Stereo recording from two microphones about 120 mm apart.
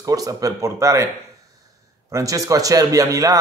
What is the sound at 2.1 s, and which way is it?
Speech, 30° right (ahead or behind).